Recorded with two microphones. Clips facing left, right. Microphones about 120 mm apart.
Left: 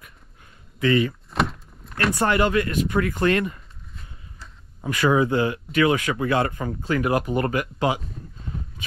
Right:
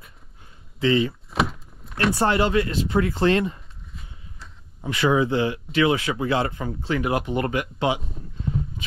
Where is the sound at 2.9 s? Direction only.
30° right (ahead or behind).